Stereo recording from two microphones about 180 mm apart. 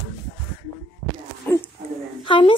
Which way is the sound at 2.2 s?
25° left (ahead or behind).